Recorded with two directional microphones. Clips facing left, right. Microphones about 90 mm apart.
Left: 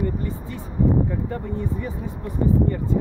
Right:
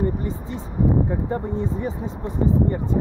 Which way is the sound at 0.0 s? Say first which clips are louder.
Right 2 dB; 20° right (ahead or behind).